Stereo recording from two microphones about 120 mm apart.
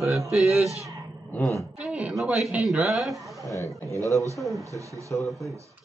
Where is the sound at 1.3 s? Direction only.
20° left (ahead or behind).